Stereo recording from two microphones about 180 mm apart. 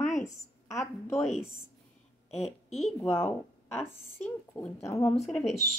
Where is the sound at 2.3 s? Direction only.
35° left (ahead or behind).